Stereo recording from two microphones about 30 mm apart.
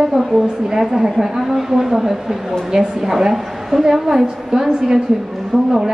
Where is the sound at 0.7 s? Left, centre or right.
Centre.